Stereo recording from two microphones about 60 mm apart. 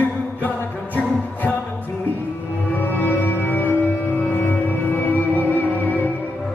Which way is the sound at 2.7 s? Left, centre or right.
Left.